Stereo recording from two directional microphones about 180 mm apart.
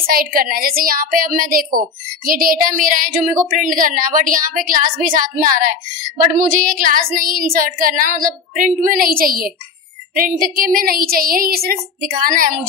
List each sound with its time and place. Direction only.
0.0 s a woman's voice: 55° right (ahead or behind)